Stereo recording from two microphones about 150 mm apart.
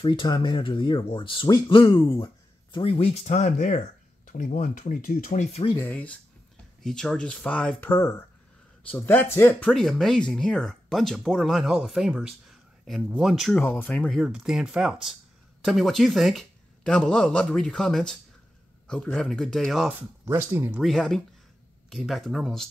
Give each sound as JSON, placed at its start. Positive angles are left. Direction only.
{"t": 0.0, "sound": "speech", "side_deg": 30}
{"t": 5.8, "sound": "speech", "side_deg": 15}
{"t": 13.5, "sound": "speech", "side_deg": 15}
{"t": 20.0, "sound": "speech", "side_deg": -15}
{"t": 20.8, "sound": "speech", "side_deg": 0}